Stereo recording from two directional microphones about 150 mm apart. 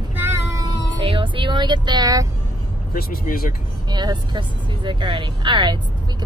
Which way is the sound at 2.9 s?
70° left (ahead or behind).